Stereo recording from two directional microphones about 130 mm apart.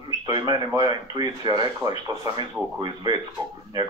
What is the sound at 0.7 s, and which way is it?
Speech, 30° right (ahead or behind).